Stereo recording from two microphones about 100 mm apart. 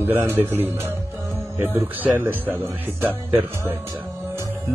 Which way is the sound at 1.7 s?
25° right (ahead or behind).